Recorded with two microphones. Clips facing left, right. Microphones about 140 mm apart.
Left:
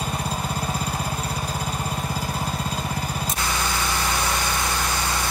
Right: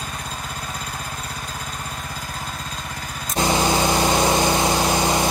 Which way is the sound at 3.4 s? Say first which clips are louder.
Right 11 dB; 25° right (ahead or behind).